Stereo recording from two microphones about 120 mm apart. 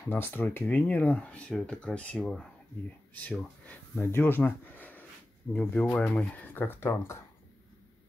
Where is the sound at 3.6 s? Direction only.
20° left (ahead or behind).